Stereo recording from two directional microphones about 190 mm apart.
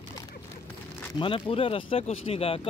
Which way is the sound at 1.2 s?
25° left (ahead or behind).